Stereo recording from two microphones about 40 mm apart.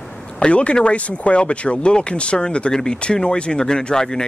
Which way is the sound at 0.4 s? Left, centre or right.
Left.